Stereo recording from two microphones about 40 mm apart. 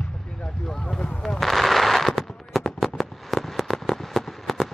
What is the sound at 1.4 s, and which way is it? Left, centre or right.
Fireworks, centre.